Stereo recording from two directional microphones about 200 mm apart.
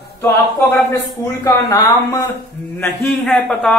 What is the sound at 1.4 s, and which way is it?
Speech, 15° left (ahead or behind).